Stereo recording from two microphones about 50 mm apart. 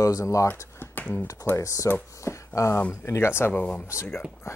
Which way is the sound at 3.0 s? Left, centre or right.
Left.